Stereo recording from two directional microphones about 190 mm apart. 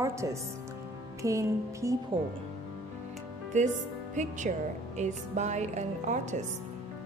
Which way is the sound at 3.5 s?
40° right (ahead or behind).